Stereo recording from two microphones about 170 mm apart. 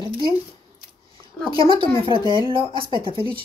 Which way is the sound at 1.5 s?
30° right (ahead or behind).